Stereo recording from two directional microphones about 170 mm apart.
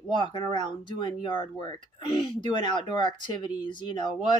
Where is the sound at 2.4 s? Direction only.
25° left (ahead or behind).